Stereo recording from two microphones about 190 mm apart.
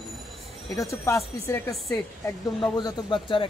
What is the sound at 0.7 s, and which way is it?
A man's voice, 15° left (ahead or behind).